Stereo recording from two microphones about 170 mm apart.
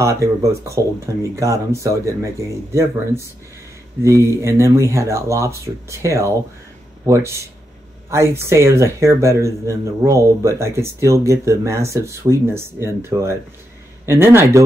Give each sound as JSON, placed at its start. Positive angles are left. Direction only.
{"t": 0.0, "sound": "speech", "side_deg": -20}
{"t": 4.0, "sound": "speech", "side_deg": -15}